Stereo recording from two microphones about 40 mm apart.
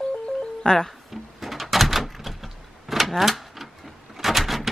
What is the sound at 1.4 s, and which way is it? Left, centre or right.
Door, centre.